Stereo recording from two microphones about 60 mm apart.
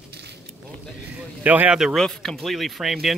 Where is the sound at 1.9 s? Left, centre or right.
Centre.